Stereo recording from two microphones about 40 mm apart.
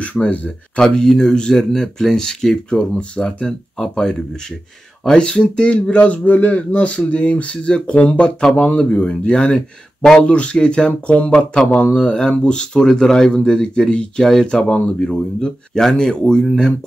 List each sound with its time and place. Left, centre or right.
0.0 s speech: left
0.7 s speech: centre
2.9 s speech: left